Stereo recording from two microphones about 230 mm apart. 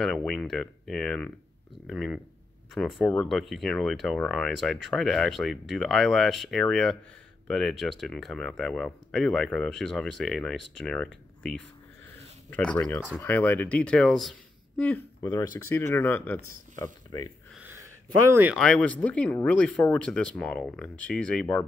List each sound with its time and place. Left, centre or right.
0.0 s speech: centre
12.5 s speech: centre
17.6 s speech: centre